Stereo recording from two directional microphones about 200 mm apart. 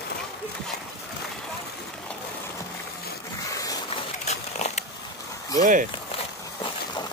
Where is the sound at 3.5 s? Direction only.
20° left (ahead or behind).